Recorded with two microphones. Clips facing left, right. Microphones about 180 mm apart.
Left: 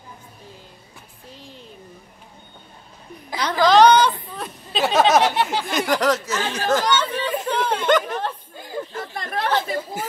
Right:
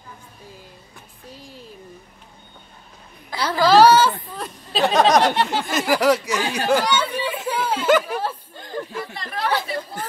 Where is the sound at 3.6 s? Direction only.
5° right (ahead or behind).